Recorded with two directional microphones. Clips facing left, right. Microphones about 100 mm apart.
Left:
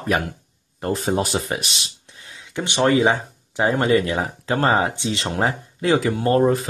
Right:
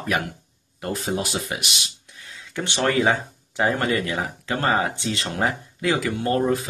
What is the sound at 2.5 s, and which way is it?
Speech, 20° left (ahead or behind).